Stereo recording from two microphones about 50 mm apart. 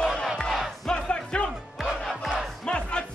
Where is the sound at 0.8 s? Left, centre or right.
Centre.